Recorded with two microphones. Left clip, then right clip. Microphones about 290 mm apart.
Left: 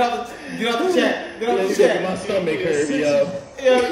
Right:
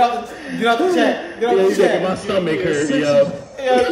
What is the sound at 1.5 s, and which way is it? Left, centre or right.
A man's voice, right.